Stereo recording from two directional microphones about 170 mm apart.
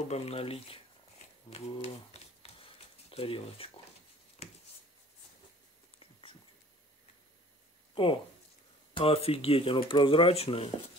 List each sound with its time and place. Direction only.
0.1 s speech: 35° left (ahead or behind)
4.4 s a sound: 35° left (ahead or behind)
7.9 s speech: 30° left (ahead or behind)